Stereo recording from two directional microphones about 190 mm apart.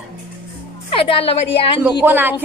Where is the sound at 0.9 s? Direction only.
30° left (ahead or behind).